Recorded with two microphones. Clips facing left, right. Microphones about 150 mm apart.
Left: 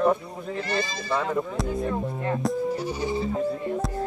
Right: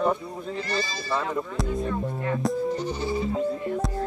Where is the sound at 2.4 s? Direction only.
5° left (ahead or behind).